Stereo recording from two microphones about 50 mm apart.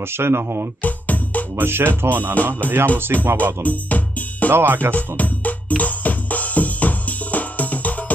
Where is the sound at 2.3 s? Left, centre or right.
Left.